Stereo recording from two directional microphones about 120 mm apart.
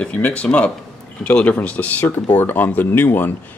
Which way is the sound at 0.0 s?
10° left (ahead or behind).